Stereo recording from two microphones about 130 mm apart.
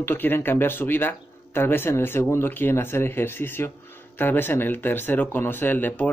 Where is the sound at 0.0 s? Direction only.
15° left (ahead or behind).